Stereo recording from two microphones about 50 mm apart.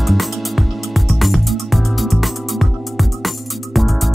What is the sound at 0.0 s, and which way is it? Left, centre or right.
Music, centre.